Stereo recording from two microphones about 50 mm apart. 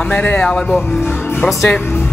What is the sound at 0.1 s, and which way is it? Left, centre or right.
Speech, left.